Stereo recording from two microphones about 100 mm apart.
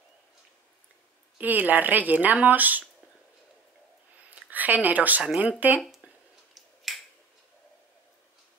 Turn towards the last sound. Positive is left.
turn(degrees=0)  # may be behind; listen again after turning